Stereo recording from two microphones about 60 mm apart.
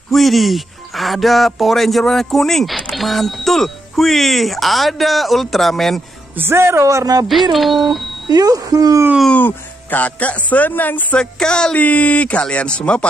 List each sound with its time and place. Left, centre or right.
0.1 s speech: centre
6.3 s speech: right
7.2 s speech: centre
8.4 s speech: right
9.5 s speech: left
11.1 s a sound: centre
11.8 s speech: left